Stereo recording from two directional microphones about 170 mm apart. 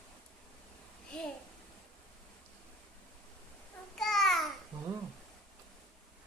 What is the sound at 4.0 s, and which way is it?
Babbling, centre (ahead or behind).